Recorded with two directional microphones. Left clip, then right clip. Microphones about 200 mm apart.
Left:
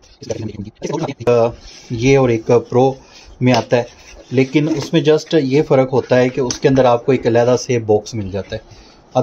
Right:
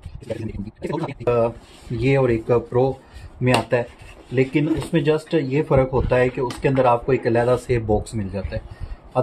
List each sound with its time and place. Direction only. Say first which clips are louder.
0.3 s speech: left 5 dB; 30° left (ahead or behind)